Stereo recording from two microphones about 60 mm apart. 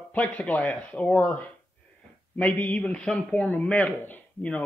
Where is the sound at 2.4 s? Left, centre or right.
Left.